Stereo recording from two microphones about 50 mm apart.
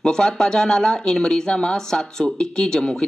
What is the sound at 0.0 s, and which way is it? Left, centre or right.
Speech, centre.